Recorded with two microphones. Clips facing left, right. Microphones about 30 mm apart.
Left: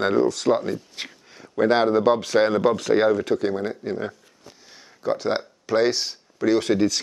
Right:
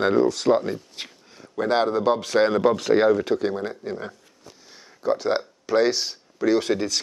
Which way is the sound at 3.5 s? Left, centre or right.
Centre.